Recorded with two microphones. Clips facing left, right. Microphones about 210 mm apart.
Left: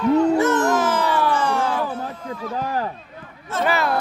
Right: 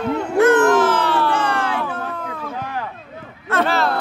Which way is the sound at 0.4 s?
55° right (ahead or behind).